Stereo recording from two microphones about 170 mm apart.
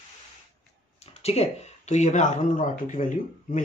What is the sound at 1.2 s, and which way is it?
Speech, 40° left (ahead or behind).